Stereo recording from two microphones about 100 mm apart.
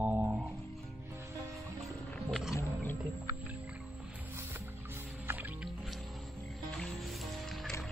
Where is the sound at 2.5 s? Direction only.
20° left (ahead or behind).